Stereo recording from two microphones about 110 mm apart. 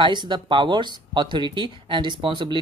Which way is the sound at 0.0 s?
45° right (ahead or behind).